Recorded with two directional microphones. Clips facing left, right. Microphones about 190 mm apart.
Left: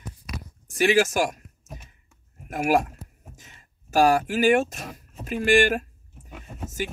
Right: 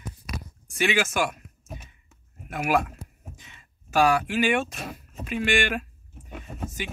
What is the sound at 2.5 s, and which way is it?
Speech, 40° left (ahead or behind).